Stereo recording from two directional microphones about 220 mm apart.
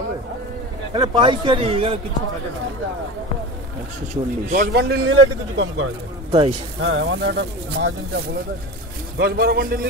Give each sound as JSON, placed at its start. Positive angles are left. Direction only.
{"t": 0.9, "sound": "a man's voice", "side_deg": -20}
{"t": 4.1, "sound": "speech", "side_deg": -35}
{"t": 4.7, "sound": "a man's voice", "side_deg": -50}
{"t": 9.2, "sound": "speech", "side_deg": -45}